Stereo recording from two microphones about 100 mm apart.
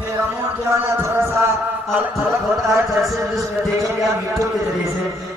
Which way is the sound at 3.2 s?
35° right (ahead or behind).